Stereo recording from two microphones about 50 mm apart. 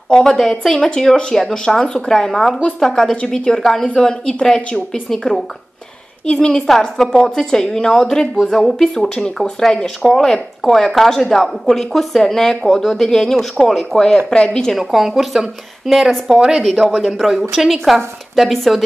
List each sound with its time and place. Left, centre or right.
0.1 s a woman's voice: centre
14.7 s a woman's voice: centre
16.9 s a woman's voice: centre